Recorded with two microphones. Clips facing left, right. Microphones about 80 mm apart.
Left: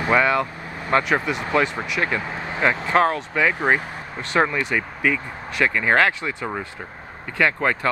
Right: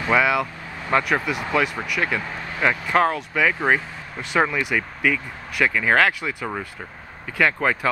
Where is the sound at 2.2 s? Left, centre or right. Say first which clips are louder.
Left 3 dB; left.